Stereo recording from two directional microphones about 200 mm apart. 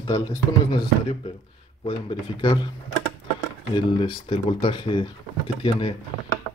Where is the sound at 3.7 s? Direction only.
25° left (ahead or behind).